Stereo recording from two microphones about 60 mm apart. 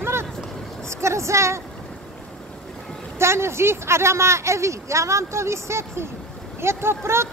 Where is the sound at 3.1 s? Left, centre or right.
Right.